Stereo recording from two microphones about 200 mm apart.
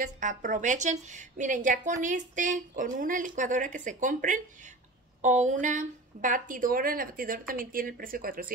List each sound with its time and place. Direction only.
0.0 s a woman's voice: 40° right (ahead or behind)